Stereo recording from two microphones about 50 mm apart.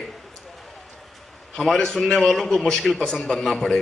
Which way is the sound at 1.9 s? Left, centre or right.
Centre.